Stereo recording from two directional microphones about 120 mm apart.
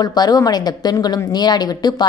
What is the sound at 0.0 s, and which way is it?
A woman's voice, 35° left (ahead or behind).